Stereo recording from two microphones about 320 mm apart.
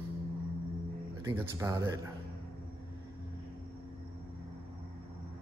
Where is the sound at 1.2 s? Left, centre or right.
Centre.